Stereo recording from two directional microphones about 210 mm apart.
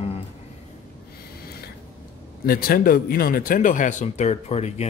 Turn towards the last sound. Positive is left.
turn(degrees=30)  # may be behind; listen again after turning